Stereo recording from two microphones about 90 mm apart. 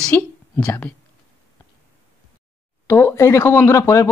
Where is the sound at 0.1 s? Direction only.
20° left (ahead or behind).